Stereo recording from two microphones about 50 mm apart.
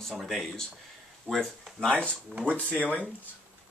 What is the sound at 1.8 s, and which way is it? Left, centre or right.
Speech, left.